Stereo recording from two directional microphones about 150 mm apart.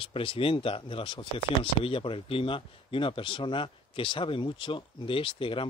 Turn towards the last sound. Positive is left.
turn(degrees=35)  # may be behind; listen again after turning